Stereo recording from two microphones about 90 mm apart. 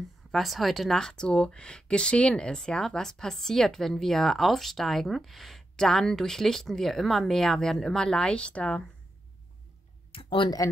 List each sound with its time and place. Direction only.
0.3 s speech: centre (ahead or behind)
10.1 s speech: 70° left (ahead or behind)